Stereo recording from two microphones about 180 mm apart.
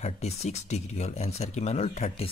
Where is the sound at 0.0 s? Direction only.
40° left (ahead or behind).